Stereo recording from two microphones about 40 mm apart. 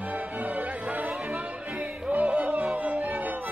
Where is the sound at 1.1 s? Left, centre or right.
Centre.